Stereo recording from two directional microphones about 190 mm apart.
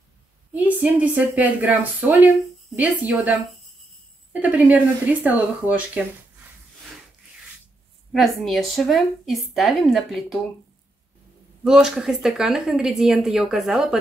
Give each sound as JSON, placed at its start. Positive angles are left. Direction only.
{"t": 0.5, "sound": "speech", "side_deg": -10}
{"t": 8.1, "sound": "a woman's voice", "side_deg": 0}
{"t": 11.6, "sound": "a woman's voice", "side_deg": -5}